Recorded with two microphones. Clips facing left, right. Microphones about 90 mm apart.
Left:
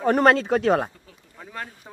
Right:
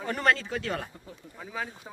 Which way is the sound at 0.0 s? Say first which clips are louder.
Left 9 dB; 50° left (ahead or behind).